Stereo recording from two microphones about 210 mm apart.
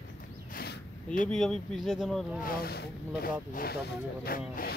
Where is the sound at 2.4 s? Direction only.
45° left (ahead or behind).